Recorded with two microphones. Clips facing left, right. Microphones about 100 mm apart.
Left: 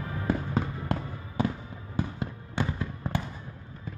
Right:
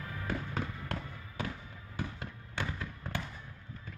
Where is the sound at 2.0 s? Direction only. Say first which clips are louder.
Left 8 dB; 25° left (ahead or behind).